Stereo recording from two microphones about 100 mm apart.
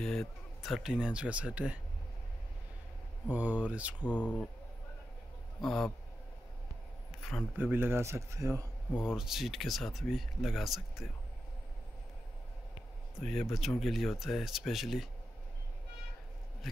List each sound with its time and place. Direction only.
0.0 s speech: 5° left (ahead or behind)
3.3 s speech: 15° right (ahead or behind)
4.0 s speech: 15° left (ahead or behind)
5.6 s speech: 5° left (ahead or behind)
7.5 s a man's voice: 20° right (ahead or behind)
8.9 s speech: 10° right (ahead or behind)
13.2 s speech: 5° left (ahead or behind)